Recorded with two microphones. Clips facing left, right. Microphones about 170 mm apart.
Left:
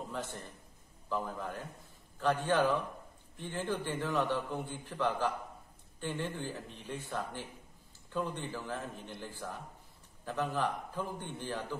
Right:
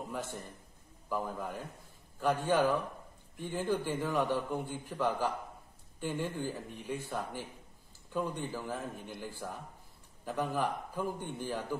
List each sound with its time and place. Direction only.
0.1 s a man's voice: 10° right (ahead or behind)